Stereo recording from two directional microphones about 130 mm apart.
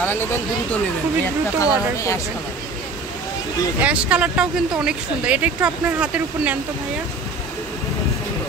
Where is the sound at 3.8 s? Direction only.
10° right (ahead or behind).